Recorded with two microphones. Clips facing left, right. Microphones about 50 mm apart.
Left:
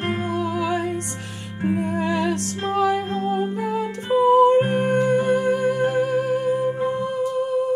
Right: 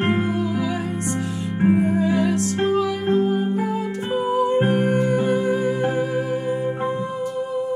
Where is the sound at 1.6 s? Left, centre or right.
Right.